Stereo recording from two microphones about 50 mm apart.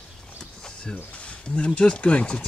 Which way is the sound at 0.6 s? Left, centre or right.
Centre.